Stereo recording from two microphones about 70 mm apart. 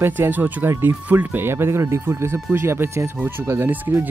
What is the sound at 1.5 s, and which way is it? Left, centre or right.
Speech, right.